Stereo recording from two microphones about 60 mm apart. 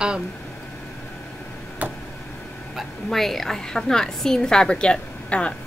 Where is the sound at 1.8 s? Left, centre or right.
Right.